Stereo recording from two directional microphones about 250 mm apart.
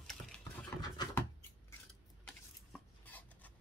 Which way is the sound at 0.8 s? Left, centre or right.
Centre.